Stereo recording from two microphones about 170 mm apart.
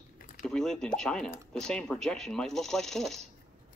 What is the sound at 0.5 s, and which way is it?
Speech, 5° left (ahead or behind).